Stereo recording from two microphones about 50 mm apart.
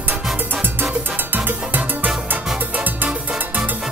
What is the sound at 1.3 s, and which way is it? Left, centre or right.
Music, right.